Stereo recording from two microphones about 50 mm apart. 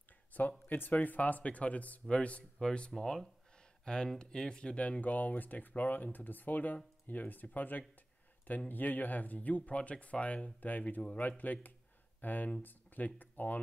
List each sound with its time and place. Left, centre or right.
0.3 s speech: left
2.9 s speech: centre; by 13.6 s left